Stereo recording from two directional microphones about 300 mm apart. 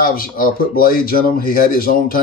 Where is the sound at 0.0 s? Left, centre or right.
Left.